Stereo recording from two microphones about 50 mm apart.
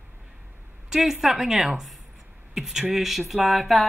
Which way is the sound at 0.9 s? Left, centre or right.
Centre.